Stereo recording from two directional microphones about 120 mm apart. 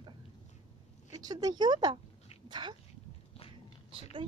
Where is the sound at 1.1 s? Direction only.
30° right (ahead or behind).